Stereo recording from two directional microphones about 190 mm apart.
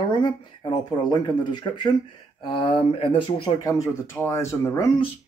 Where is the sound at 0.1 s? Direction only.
25° left (ahead or behind).